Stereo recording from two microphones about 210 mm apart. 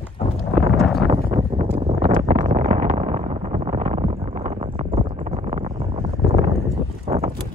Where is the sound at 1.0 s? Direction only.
25° right (ahead or behind).